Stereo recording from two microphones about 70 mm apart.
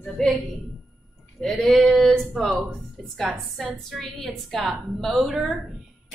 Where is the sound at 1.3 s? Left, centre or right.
Centre.